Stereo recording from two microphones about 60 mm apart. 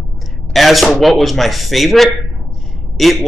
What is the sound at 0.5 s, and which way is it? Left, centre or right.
Speech, centre.